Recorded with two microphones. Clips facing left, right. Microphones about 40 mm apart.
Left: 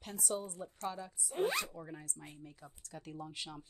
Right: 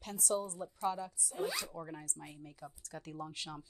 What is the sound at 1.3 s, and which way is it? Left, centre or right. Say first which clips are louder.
Speech: left 4 dB; left.